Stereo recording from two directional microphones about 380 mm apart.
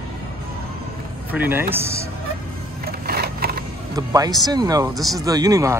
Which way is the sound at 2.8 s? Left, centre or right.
Right.